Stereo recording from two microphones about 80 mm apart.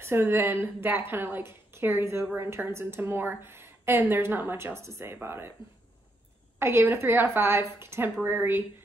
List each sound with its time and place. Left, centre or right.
0.0 s a woman's voice: right
6.6 s a woman's voice: right